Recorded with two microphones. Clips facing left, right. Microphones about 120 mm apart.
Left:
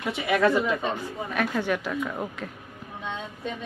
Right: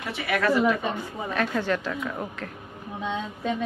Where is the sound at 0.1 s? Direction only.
20° left (ahead or behind).